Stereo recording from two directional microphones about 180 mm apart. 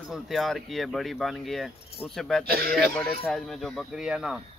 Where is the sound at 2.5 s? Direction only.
55° right (ahead or behind).